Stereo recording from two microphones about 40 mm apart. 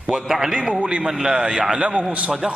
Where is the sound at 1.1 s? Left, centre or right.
Centre.